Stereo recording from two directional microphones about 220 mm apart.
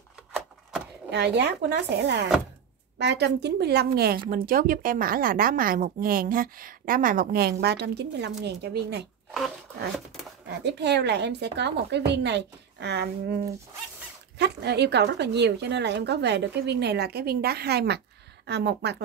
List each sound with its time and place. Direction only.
1.1 s a woman's voice: 50° right (ahead or behind)
10.5 s speech: 50° right (ahead or behind)
14.4 s speech: 50° right (ahead or behind)